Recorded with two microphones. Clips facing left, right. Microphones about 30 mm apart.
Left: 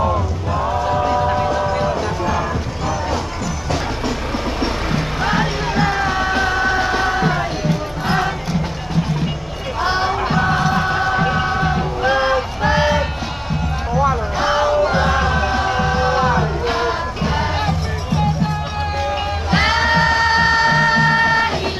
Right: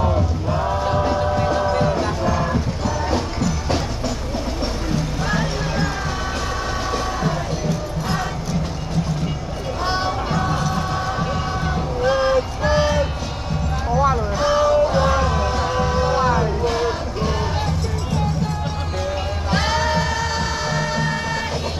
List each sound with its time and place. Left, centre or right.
4.6 s music: left
9.8 s music: centre
10.2 s music: left
14.4 s music: left
19.5 s music: left